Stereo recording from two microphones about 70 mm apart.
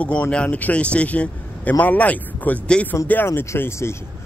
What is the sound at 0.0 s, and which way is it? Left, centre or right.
Speech, centre.